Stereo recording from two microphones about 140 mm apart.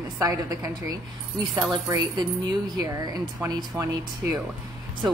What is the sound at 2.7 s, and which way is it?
A woman's voice, 25° right (ahead or behind).